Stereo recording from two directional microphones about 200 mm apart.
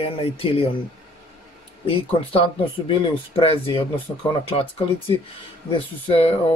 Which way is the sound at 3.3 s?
25° left (ahead or behind).